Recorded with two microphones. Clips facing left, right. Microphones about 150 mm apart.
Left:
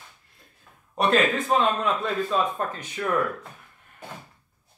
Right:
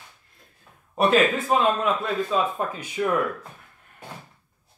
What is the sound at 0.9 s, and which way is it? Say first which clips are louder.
A man's voice: right 2 dB; 5° right (ahead or behind).